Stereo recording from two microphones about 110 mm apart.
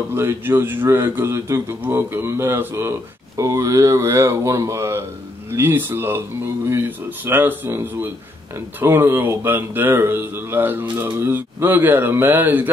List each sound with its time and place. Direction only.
0.1 s speech: 20° right (ahead or behind)
7.2 s speech: 20° right (ahead or behind)